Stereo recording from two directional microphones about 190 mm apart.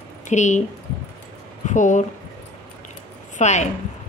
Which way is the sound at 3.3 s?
40° left (ahead or behind).